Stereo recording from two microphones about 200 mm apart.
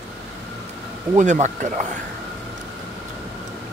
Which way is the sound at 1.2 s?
35° right (ahead or behind).